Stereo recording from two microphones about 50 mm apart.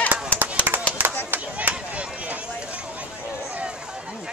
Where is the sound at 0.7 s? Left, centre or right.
Right.